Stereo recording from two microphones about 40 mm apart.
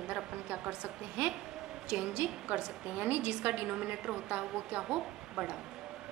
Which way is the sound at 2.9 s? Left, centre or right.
Right.